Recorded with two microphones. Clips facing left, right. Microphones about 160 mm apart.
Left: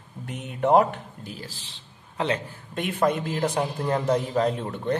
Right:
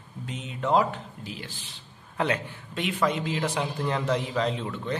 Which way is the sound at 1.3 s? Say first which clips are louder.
Left 1 dB; 35° left (ahead or behind).